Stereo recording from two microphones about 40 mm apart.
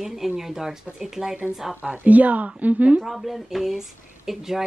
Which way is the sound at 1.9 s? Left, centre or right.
Right.